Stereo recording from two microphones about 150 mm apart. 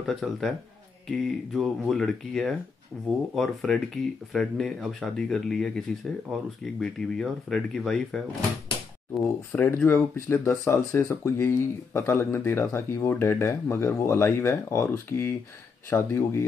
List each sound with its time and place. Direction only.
0.0 s speech: centre (ahead or behind)
9.2 s speech: 10° left (ahead or behind)